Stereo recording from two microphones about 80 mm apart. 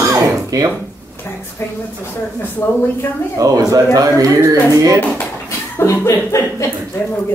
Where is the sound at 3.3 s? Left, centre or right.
Right.